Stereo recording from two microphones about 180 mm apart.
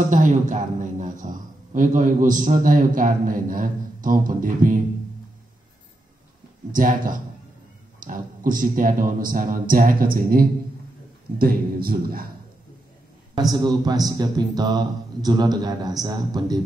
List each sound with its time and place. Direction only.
0.1 s speech: 45° right (ahead or behind)
6.7 s a man's voice: 50° right (ahead or behind)
13.3 s speech: 20° right (ahead or behind)